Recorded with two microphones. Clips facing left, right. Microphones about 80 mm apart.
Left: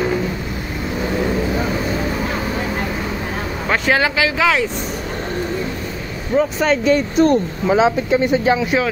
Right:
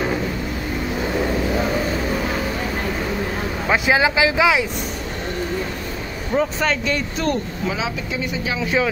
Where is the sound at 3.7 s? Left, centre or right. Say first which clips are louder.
Even; centre.